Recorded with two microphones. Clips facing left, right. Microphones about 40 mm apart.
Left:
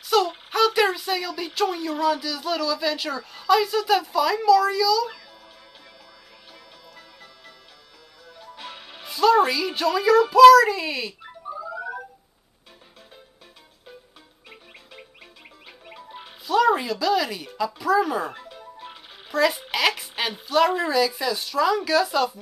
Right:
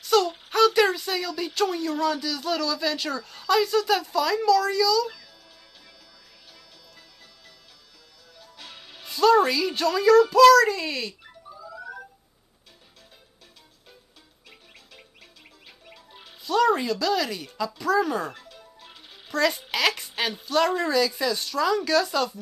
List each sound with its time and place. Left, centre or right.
0.0 s speech: centre
8.4 s music: centre
9.0 s speech: centre
11.2 s music: left
15.8 s music: left
16.4 s speech: centre
18.3 s music: centre
19.3 s speech: centre